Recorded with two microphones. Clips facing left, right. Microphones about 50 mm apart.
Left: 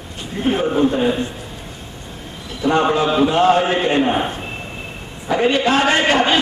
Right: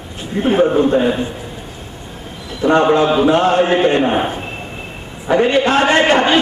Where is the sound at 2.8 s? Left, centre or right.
Centre.